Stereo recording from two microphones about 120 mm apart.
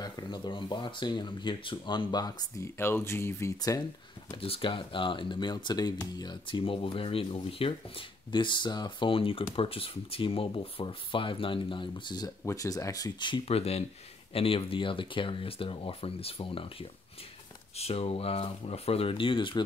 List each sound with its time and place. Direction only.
0.0 s speech: 35° left (ahead or behind)
2.8 s speech: 20° left (ahead or behind)
4.4 s speech: 45° left (ahead or behind)
13.5 s speech: 60° left (ahead or behind); by 19.6 s 45° left (ahead or behind)